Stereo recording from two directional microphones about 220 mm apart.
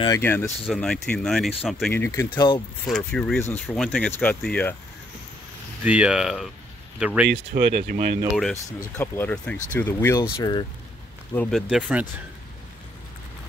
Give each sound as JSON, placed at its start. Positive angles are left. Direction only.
{"t": 0.0, "sound": "speech", "side_deg": 10}
{"t": 2.9, "sound": "speech", "side_deg": 5}
{"t": 5.9, "sound": "speech", "side_deg": -5}
{"t": 7.5, "sound": "speech", "side_deg": -40}
{"t": 8.7, "sound": "speech", "side_deg": 10}
{"t": 11.3, "sound": "speech", "side_deg": 0}